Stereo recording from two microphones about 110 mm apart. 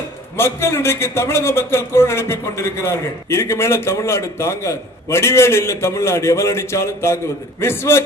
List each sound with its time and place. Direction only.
0.4 s a man's voice: 25° left (ahead or behind)